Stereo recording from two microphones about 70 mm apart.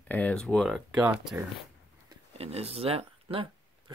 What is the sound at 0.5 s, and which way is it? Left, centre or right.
Speech, centre.